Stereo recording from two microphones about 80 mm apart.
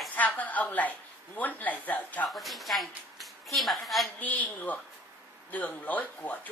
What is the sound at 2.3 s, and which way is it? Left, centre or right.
A woman's voice, centre.